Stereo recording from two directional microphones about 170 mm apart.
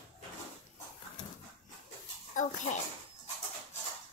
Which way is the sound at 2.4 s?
45° left (ahead or behind).